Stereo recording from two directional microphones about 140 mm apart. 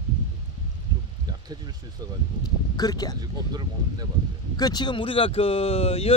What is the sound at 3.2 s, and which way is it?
Speech, 30° right (ahead or behind).